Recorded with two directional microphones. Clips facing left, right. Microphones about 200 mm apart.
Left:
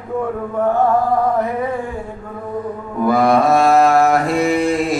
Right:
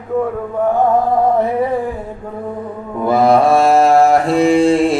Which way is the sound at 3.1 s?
30° right (ahead or behind).